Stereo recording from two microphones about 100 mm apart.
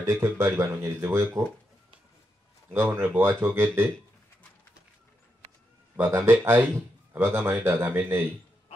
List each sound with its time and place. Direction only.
0.0 s speech: 30° right (ahead or behind)
2.7 s speech: 25° right (ahead or behind)
5.9 s speech: 25° right (ahead or behind)